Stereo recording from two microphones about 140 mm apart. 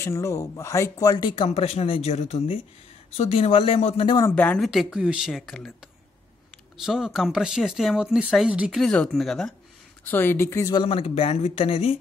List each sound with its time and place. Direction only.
0.0 s speech: 20° left (ahead or behind)
1.3 s speech: 40° left (ahead or behind)
4.2 s speech: 15° left (ahead or behind)
4.6 s speech: centre (ahead or behind)
6.8 s speech: centre (ahead or behind)
10.0 s speech: 15° left (ahead or behind)
10.7 s speech: 40° left (ahead or behind)